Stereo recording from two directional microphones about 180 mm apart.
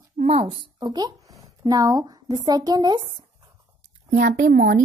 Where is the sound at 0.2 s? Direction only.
35° right (ahead or behind).